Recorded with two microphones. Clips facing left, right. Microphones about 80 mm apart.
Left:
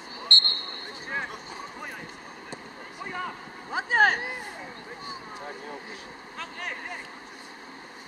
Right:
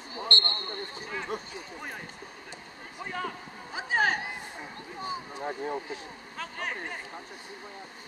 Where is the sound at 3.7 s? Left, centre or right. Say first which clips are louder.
Left 5 dB; left.